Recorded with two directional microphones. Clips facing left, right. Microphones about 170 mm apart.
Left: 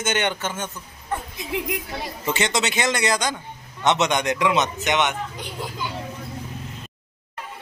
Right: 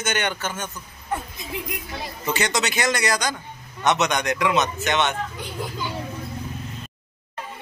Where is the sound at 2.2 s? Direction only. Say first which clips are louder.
Even; 25° left (ahead or behind).